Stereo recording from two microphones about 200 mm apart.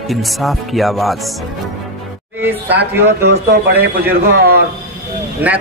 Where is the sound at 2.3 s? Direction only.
10° right (ahead or behind).